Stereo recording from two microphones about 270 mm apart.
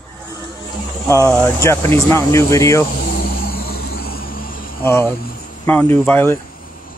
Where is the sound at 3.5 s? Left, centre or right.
Left.